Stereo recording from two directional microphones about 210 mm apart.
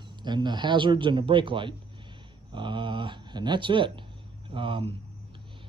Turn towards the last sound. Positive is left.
turn(degrees=-25)  # may be behind; listen again after turning